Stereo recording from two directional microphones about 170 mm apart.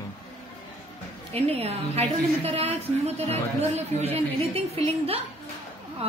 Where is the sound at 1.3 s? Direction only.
35° right (ahead or behind).